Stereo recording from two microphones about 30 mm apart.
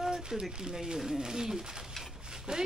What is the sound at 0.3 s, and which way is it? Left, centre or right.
Speech, right.